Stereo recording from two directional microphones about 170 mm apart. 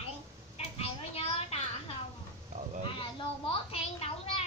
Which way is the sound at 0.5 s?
35° left (ahead or behind).